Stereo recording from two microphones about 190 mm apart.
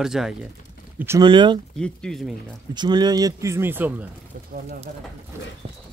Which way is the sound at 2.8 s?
20° right (ahead or behind).